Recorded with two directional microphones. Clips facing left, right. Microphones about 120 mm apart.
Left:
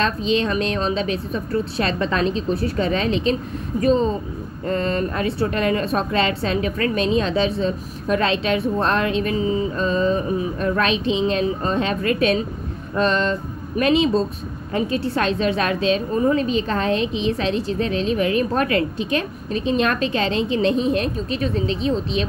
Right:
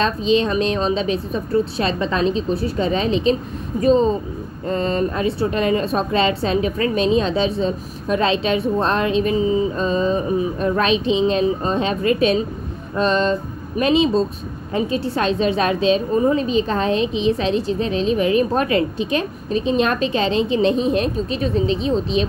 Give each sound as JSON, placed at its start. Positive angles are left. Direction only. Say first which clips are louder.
{"t": 0.0, "sound": "a woman's voice", "louder": "right 3 dB", "side_deg": -30}